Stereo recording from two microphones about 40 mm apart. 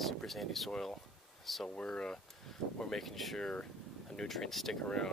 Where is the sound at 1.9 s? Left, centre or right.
Centre.